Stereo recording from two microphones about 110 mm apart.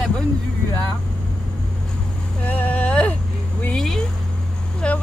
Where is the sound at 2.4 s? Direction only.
15° left (ahead or behind).